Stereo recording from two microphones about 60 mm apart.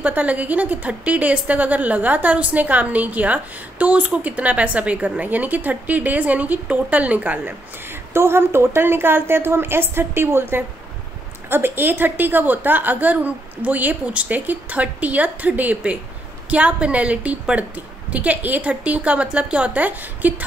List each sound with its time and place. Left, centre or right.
0.0 s a woman's voice: right
7.9 s a woman's voice: right